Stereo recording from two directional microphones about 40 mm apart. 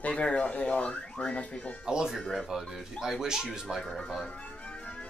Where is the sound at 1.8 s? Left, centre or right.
Centre.